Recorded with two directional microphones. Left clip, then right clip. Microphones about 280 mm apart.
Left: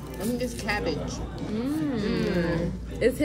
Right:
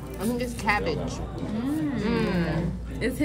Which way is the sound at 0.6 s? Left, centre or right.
Right.